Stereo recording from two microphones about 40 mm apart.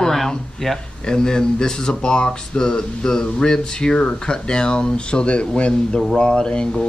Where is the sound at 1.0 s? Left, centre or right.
Centre.